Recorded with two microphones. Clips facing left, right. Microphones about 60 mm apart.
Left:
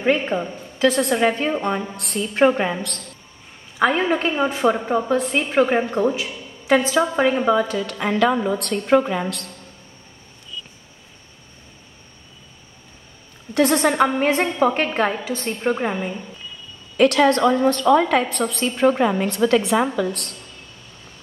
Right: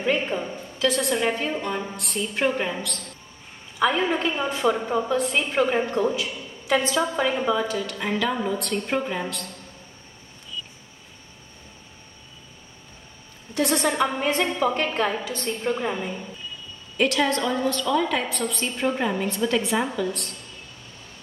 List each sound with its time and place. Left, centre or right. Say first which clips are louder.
0.0 s a woman's voice: left 4 dB; left
1.1 s a woman's voice: left 5 dB; left
4.1 s a woman's voice: left 4 dB; left
5.8 s a woman's voice: left 3 dB; centre; by 8.0 s left
8.0 s a woman's voice: left 7 dB; left
13.6 s a woman's voice: left 5 dB; left
16.9 s a woman's voice: left 7 dB; left
17.6 s a woman's voice: left 7 dB; left